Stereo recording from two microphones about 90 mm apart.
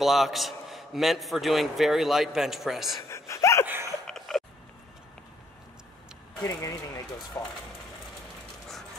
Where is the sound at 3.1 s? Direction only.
35° left (ahead or behind).